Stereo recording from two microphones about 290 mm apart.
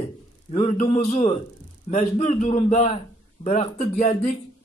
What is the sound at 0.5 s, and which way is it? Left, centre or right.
A man's voice, left.